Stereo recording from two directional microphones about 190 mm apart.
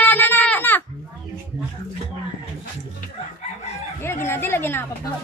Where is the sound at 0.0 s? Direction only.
10° left (ahead or behind).